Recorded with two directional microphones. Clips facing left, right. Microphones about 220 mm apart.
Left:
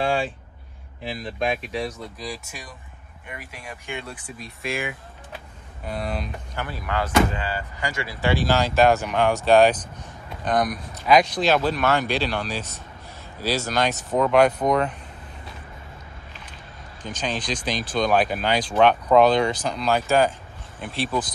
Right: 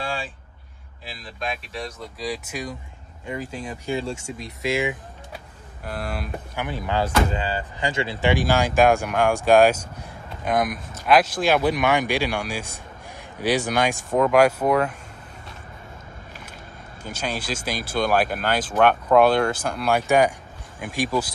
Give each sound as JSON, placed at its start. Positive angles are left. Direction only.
{"t": 3.3, "sound": "speech", "side_deg": -30}
{"t": 5.9, "sound": "speech", "side_deg": 0}
{"t": 6.7, "sound": "speech", "side_deg": -25}
{"t": 17.0, "sound": "speech", "side_deg": -10}